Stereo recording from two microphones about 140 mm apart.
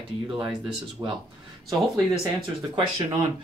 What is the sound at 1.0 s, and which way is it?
Speech, 25° right (ahead or behind).